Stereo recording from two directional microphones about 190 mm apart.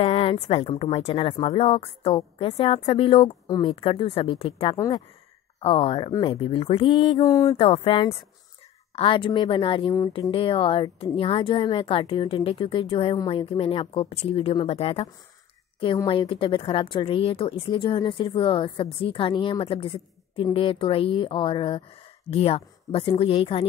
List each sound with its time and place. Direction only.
0.0 s a woman's voice: 30° left (ahead or behind)
7.5 s a woman's voice: 30° left (ahead or behind)